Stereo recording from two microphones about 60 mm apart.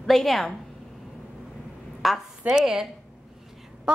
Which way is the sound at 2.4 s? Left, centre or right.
Centre.